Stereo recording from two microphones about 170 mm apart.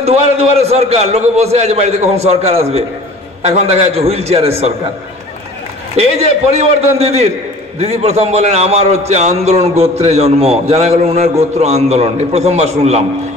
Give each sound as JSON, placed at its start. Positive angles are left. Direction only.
{"t": 0.0, "sound": "a man's voice", "side_deg": -35}
{"t": 6.5, "sound": "a man's voice", "side_deg": -40}